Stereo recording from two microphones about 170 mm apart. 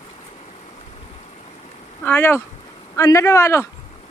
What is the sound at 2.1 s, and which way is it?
A man's voice, 10° left (ahead or behind).